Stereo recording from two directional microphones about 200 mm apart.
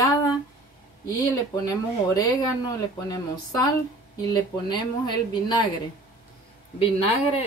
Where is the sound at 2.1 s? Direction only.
20° left (ahead or behind).